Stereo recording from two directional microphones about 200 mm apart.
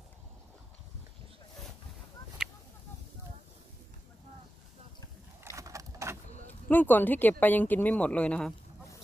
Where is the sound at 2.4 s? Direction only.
5° right (ahead or behind).